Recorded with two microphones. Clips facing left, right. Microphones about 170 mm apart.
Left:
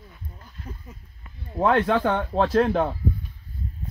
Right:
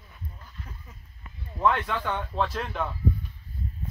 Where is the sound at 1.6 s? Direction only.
50° left (ahead or behind).